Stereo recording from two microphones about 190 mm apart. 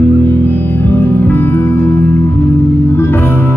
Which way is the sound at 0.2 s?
10° left (ahead or behind).